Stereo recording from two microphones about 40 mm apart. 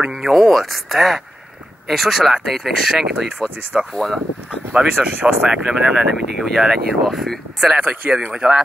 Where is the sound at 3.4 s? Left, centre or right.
Centre.